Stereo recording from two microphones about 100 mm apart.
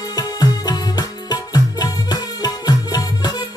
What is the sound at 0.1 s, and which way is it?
Music, 40° left (ahead or behind).